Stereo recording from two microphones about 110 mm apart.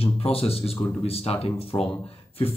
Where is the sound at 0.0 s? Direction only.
65° left (ahead or behind).